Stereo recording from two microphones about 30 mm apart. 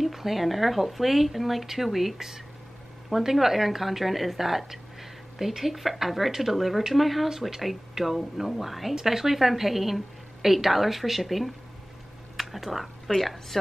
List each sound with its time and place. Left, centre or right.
0.0 s a woman's voice: centre
8.0 s speech: centre
8.4 s a woman's voice: centre